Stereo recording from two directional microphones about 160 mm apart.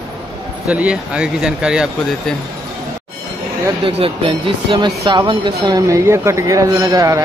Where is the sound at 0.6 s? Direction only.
10° right (ahead or behind).